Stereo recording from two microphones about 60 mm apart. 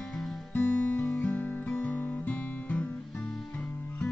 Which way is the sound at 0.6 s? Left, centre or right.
Left.